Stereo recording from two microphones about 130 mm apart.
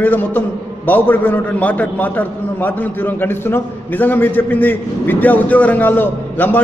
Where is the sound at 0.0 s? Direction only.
15° left (ahead or behind).